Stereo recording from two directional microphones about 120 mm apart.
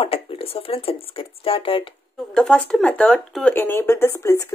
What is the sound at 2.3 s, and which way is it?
Speech, 5° left (ahead or behind).